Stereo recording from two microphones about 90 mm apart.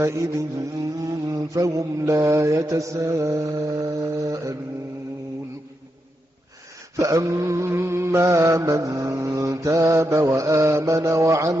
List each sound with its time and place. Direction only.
0.0 s mantra: 35° right (ahead or behind)
7.0 s mantra: 35° right (ahead or behind)